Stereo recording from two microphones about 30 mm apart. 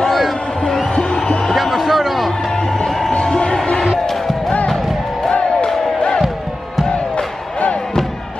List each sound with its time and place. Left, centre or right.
0.0 s heart sounds: centre
1.5 s music: centre
2.7 s music: centre
3.1 s crowd: left
5.3 s music: left